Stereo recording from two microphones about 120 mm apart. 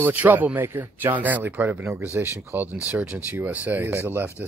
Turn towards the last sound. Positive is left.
turn(degrees=-20)  # may be behind; listen again after turning